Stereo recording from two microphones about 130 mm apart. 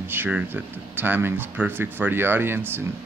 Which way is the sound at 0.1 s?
15° right (ahead or behind).